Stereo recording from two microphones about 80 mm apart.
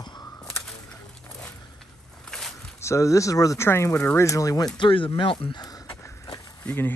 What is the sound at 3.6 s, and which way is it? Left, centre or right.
Speech, left.